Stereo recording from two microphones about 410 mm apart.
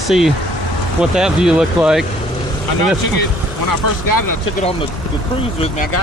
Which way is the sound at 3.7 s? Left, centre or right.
Left.